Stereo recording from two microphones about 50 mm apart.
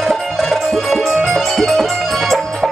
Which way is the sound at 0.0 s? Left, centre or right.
Centre.